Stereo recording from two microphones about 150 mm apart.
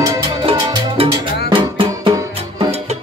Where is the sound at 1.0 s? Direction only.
40° right (ahead or behind).